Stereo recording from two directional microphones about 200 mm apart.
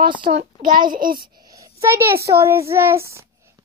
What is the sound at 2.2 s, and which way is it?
A child's voice, 15° right (ahead or behind).